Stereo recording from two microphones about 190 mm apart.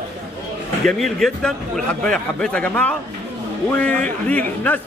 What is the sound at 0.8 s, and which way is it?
A man's voice, centre (ahead or behind).